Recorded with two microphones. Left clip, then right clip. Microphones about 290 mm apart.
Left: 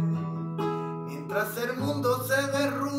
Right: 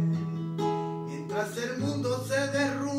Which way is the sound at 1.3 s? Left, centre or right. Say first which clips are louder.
Left 3 dB; centre.